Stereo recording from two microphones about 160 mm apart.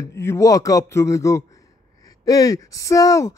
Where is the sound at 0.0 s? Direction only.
15° left (ahead or behind).